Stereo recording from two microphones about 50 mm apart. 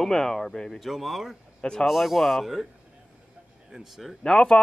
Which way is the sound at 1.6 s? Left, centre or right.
Centre.